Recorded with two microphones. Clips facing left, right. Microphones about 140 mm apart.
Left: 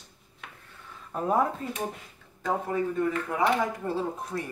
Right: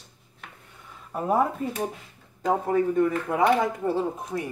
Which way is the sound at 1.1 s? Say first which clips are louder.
Right 1 dB; 10° right (ahead or behind).